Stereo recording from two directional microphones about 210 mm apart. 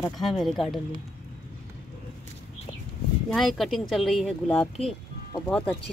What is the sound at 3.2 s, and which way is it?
Speech, centre (ahead or behind).